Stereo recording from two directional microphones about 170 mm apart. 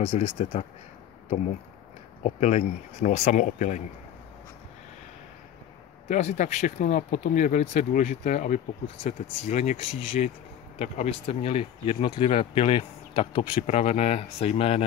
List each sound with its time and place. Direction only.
0.0 s speech: 35° left (ahead or behind)
2.2 s speech: 40° left (ahead or behind)
6.0 s speech: 45° left (ahead or behind)